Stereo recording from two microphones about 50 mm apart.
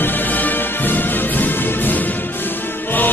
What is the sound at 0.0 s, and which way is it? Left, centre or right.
Music, left.